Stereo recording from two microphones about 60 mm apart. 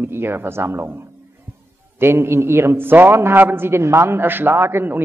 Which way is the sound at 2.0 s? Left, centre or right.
Right.